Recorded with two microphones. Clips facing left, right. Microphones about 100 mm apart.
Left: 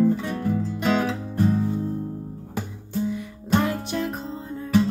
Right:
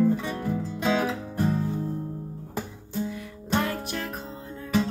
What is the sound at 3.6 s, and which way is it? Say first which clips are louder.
Music: left 4 dB; 15° left (ahead or behind).